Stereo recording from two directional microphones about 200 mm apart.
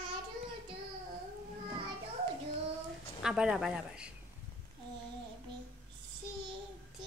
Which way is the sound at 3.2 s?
5° right (ahead or behind).